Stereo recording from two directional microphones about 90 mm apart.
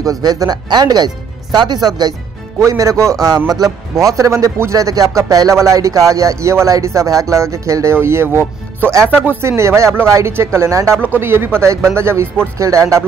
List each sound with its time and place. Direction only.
0.0 s speech: 45° right (ahead or behind)
2.6 s speech: 35° right (ahead or behind)
3.3 s speech: 50° right (ahead or behind); by 13.0 s 35° right (ahead or behind)